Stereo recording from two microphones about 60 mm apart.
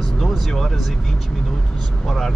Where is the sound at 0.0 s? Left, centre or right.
Centre.